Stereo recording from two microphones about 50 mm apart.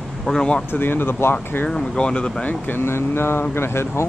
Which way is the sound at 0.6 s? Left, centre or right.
Left.